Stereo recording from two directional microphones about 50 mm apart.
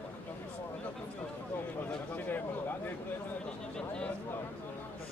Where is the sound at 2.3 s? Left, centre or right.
Left.